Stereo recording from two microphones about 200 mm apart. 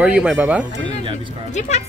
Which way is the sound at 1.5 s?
35° left (ahead or behind).